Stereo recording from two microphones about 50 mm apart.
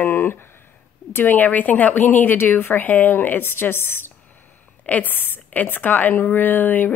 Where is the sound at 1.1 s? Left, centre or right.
Left.